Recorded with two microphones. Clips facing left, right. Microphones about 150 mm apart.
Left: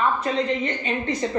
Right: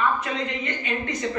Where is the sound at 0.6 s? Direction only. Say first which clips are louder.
Left 3 dB; 30° left (ahead or behind).